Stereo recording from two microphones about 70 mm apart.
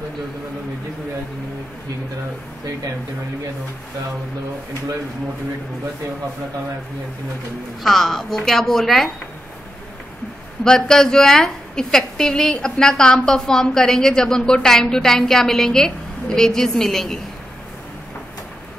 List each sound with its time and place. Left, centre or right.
7.8 s a woman's voice: centre
10.6 s a woman's voice: centre